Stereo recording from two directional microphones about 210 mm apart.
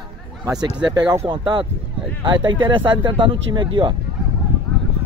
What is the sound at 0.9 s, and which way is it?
Speech, 20° right (ahead or behind).